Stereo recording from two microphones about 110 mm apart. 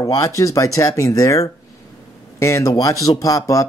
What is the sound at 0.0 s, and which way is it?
Speech, 35° left (ahead or behind).